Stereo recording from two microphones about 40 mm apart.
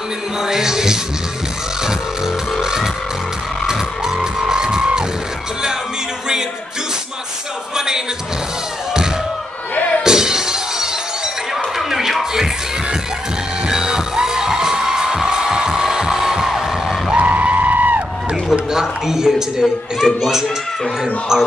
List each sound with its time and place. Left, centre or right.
0.4 s music: centre
1.8 s a sound: centre
2.6 s music: centre
7.7 s music: centre
10.0 s shatter: centre
11.5 s music: centre
13.7 s music: centre
17.1 s a sound: right
18.3 s a child's voice: centre
21.0 s music: centre